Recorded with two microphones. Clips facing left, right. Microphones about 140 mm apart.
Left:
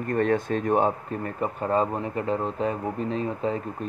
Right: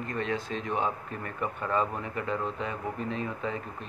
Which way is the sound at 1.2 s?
35° left (ahead or behind).